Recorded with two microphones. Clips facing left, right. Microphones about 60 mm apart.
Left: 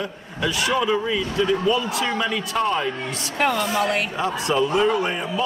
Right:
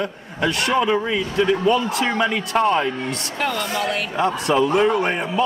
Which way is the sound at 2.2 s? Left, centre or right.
Right.